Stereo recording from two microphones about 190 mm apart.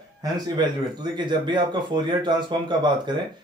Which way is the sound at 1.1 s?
25° right (ahead or behind).